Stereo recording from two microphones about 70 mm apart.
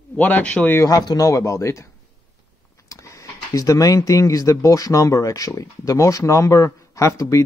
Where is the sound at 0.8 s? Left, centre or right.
Left.